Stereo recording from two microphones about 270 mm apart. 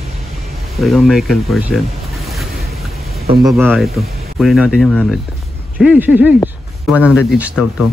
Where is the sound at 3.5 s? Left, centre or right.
Centre.